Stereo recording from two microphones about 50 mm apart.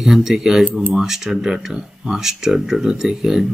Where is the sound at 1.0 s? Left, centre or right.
Centre.